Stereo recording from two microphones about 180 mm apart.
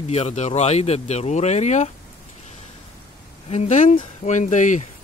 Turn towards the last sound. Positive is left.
turn(degrees=40)  # may be behind; listen again after turning